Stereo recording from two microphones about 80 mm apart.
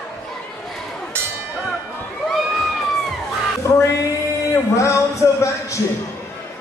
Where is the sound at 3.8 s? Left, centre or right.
Left.